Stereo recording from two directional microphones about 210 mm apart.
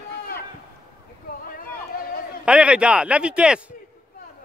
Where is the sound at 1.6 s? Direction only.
45° left (ahead or behind).